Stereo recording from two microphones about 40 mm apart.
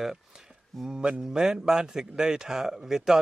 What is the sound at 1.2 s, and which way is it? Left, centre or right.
Speech, centre.